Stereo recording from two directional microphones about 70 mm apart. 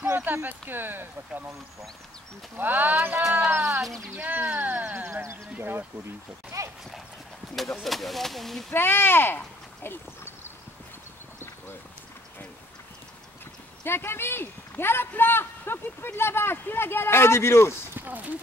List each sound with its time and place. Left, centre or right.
0.1 s speech: right
2.5 s speech: right
3.8 s speech: centre
4.2 s speech: right
4.9 s speech: right
6.5 s speech: right
7.5 s speech: centre
8.7 s a man's voice: left
13.8 s a man's voice: left
17.9 s speech: right